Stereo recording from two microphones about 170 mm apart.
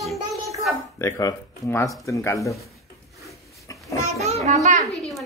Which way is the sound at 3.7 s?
20° left (ahead or behind).